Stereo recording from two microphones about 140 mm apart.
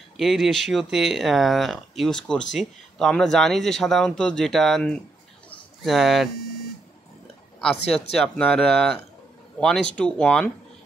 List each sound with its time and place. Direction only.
0.2 s speech: centre (ahead or behind)
7.6 s speech: 5° left (ahead or behind)